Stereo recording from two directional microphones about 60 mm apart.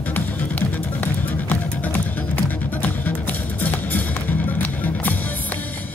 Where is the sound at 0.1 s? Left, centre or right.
Left.